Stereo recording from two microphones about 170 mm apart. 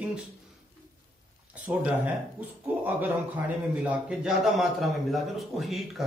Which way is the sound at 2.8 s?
10° right (ahead or behind).